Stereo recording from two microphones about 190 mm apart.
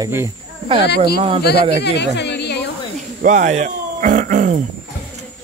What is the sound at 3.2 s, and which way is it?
Speech, 40° right (ahead or behind).